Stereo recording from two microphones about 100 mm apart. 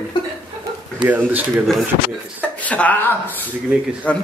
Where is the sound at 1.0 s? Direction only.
15° right (ahead or behind).